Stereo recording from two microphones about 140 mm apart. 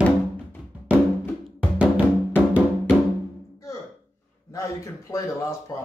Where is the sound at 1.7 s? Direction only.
10° right (ahead or behind).